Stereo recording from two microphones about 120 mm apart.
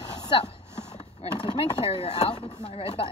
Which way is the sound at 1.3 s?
45° left (ahead or behind).